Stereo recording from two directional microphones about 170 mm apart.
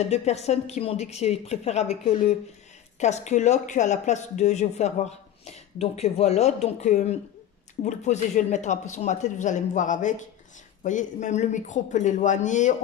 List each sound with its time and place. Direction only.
0.0 s a woman's voice: 40° left (ahead or behind)